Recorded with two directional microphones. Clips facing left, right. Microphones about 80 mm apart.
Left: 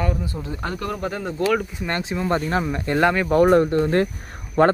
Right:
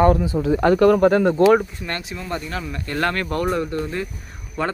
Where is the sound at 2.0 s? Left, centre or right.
Left; by 3.4 s centre.